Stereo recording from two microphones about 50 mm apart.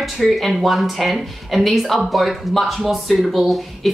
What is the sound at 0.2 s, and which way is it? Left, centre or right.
Speech, centre.